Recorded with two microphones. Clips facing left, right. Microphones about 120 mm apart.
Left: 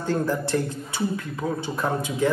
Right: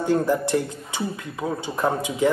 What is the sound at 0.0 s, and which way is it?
A man's voice, 15° right (ahead or behind).